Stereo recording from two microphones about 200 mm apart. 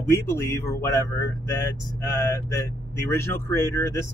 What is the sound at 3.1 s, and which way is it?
Speech, 10° left (ahead or behind).